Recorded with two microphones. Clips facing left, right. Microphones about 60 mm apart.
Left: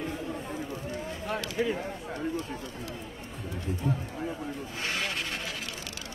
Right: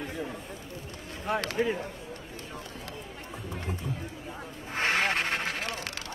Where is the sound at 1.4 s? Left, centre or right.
Right.